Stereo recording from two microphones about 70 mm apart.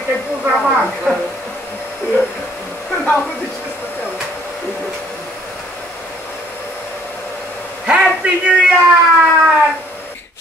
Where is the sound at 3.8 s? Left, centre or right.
Left.